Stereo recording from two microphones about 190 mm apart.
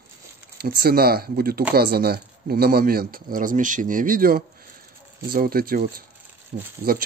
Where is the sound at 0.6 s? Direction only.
55° right (ahead or behind).